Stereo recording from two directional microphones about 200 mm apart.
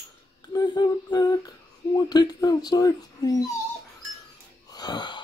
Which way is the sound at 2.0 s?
20° left (ahead or behind).